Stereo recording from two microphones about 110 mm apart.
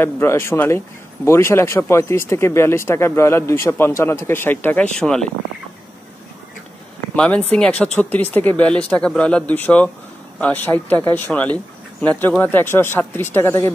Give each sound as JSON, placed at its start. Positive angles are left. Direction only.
{"t": 0.0, "sound": "speech", "side_deg": 25}
{"t": 7.2, "sound": "speech", "side_deg": 10}